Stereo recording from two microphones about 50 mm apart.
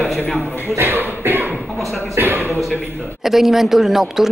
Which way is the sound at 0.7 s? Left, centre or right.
Right.